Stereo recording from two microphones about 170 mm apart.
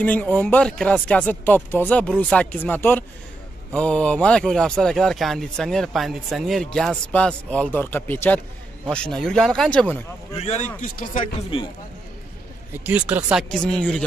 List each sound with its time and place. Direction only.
0.0 s speech: 10° left (ahead or behind)
10.4 s speech: 45° left (ahead or behind)
11.5 s speech: 35° left (ahead or behind)
12.8 s speech: 10° right (ahead or behind)